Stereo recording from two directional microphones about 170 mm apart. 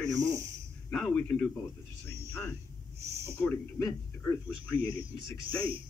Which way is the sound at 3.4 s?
15° left (ahead or behind).